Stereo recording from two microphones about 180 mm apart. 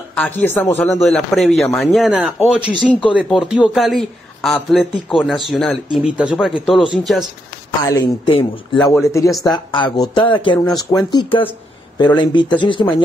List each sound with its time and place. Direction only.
0.1 s speech: 10° left (ahead or behind)
2.8 s speech: 5° left (ahead or behind)
7.9 s speech: 25° left (ahead or behind)
9.0 s speech: 15° left (ahead or behind)